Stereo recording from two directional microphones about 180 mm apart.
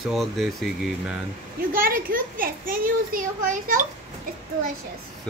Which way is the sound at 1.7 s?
50° right (ahead or behind).